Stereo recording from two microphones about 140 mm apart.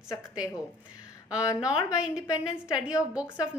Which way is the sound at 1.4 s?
25° left (ahead or behind).